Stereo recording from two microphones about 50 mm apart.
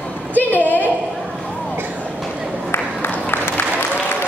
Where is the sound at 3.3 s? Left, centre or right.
Left.